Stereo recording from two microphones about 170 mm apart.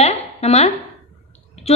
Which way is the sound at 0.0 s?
40° left (ahead or behind).